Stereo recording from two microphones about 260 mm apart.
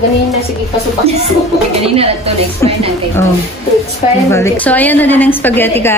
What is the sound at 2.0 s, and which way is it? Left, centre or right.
Speech, right.